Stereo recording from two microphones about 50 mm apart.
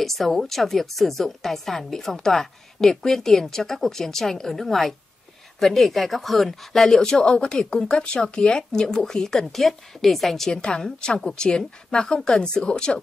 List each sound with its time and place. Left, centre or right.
0.0 s a woman's voice: centre
10.5 s a woman's voice: centre